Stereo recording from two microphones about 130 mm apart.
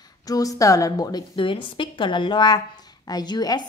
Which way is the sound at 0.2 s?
25° left (ahead or behind).